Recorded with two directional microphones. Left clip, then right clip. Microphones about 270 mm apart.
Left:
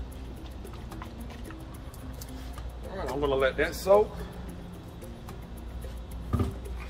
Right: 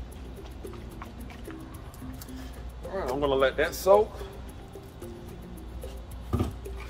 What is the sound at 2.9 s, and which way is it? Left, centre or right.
Speech, centre.